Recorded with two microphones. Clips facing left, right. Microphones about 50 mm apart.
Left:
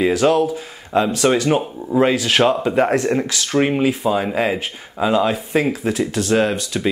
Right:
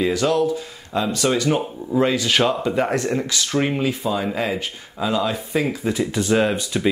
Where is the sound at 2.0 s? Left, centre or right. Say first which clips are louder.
Left 3 dB; centre.